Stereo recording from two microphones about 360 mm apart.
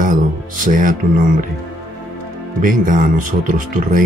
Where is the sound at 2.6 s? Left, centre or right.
Right.